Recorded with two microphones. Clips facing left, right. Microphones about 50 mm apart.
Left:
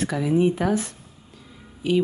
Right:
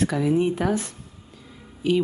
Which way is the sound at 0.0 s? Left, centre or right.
Centre.